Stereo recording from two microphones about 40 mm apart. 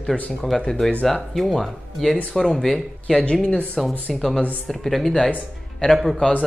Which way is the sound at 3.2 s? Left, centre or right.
Left.